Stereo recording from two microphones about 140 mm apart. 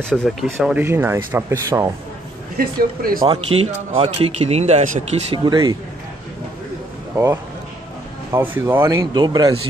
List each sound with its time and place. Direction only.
0.1 s speech: centre (ahead or behind)
0.7 s speech: 15° right (ahead or behind)
2.5 s speech: 90° right
3.4 s speech: 45° right (ahead or behind); by 5.0 s 60° right (ahead or behind)
5.3 s speech: 35° right (ahead or behind)
8.3 s speech: 15° right (ahead or behind)
8.8 s speech: 30° right (ahead or behind)